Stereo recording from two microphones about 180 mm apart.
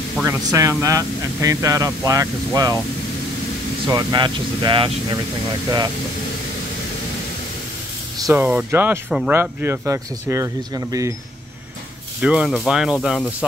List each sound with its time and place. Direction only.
0.2 s speech: 15° right (ahead or behind)
3.9 s speech: 25° right (ahead or behind)
8.4 s speech: 10° right (ahead or behind)
12.2 s speech: 5° right (ahead or behind)